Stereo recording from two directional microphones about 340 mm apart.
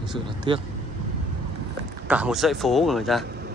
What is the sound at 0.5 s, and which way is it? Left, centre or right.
Speech, centre.